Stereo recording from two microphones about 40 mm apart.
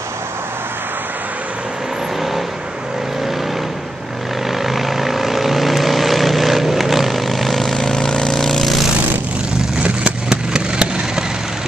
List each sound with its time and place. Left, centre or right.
4.5 s vehicle: centre
7.8 s vehicle: centre
10.3 s a sound: centre